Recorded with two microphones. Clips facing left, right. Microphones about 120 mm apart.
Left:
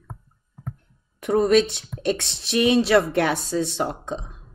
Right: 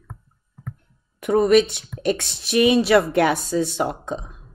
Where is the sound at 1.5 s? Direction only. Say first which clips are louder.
Right 2 dB; 10° right (ahead or behind).